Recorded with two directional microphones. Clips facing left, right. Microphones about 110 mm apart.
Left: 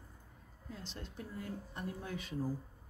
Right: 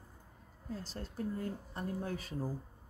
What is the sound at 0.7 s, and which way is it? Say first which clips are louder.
Speech: right 5 dB; 40° right (ahead or behind).